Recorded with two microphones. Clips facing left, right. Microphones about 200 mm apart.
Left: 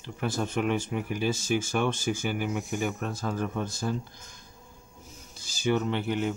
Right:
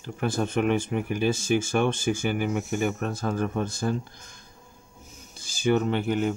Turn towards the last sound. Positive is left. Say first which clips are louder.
# right 3 dB
turn(degrees=-50)  # may be behind; listen again after turning